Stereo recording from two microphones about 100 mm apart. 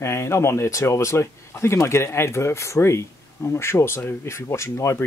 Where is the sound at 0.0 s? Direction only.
30° left (ahead or behind).